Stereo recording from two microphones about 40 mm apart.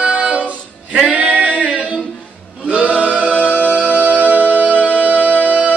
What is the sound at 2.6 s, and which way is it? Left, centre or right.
Singing, right.